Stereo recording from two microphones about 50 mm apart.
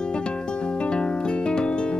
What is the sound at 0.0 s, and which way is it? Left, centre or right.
Music, centre.